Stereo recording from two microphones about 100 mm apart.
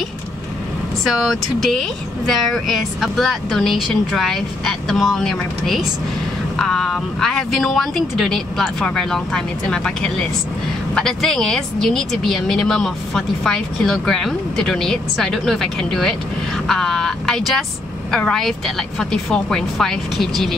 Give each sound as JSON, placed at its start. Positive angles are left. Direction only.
{"t": 1.0, "sound": "speech", "side_deg": 0}